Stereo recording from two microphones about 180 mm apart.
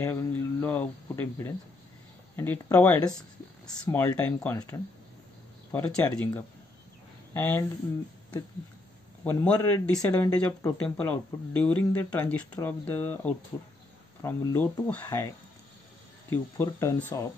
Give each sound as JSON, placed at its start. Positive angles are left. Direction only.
{"t": 0.0, "sound": "speech", "side_deg": 10}
{"t": 5.7, "sound": "speech", "side_deg": 10}
{"t": 9.2, "sound": "speech", "side_deg": 10}
{"t": 16.5, "sound": "speech", "side_deg": 15}